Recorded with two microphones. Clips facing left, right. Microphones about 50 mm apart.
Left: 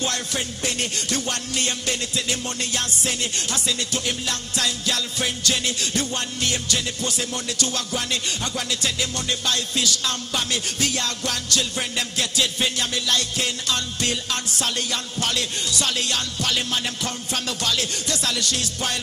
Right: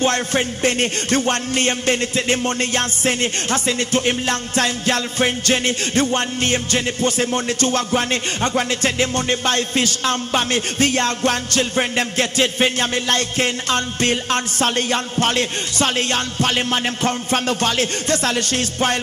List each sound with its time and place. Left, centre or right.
0.0 s music: right